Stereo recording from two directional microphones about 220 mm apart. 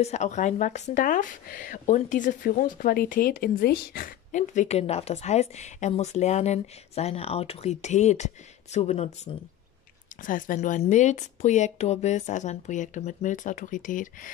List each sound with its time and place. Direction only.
0.0 s speech: 30° left (ahead or behind)